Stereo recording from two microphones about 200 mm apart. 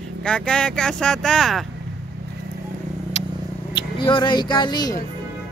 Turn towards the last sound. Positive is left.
turn(degrees=20)  # may be behind; listen again after turning